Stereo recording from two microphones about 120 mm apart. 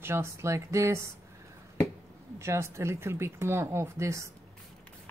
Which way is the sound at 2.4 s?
25° right (ahead or behind).